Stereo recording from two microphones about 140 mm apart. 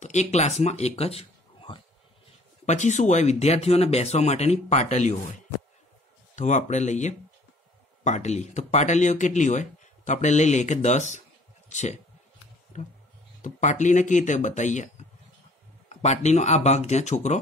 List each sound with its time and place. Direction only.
0.0 s speech: 55° left (ahead or behind)
2.6 s speech: 55° left (ahead or behind)
15.9 s speech: 55° left (ahead or behind)